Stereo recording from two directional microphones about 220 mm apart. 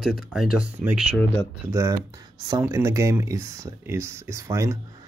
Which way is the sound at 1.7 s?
15° right (ahead or behind).